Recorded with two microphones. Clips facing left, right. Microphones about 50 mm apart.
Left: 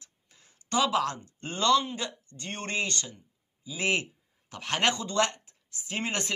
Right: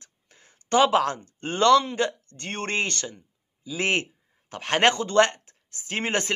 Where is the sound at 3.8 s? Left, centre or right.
Right.